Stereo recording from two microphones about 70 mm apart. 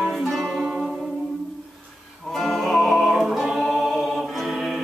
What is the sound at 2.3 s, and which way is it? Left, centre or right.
Music, centre.